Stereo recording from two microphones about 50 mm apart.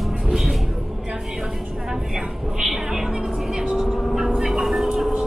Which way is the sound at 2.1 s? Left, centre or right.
Centre.